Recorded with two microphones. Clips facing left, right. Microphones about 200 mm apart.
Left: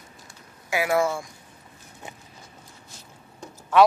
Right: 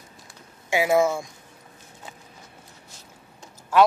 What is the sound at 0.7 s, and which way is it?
Speech, 25° right (ahead or behind).